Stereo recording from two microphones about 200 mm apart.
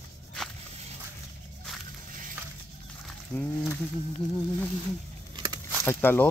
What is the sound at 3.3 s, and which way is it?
Speech, 5° left (ahead or behind).